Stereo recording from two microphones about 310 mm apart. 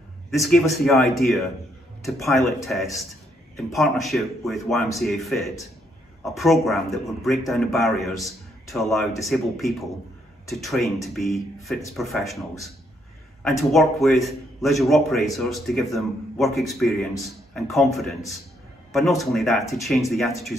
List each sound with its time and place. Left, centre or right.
0.3 s a man's voice: centre